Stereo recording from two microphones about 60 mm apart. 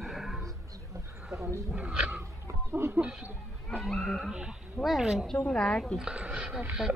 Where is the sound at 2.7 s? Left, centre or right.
Right.